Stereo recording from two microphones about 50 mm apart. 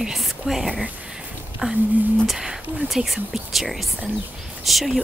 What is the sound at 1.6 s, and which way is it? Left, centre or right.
Speech, centre.